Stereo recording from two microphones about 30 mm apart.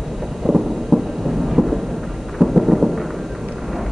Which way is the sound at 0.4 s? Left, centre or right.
Centre.